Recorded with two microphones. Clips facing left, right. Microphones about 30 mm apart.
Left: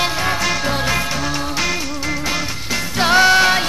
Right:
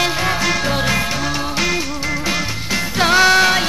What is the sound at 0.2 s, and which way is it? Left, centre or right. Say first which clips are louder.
Music: right 1 dB; centre.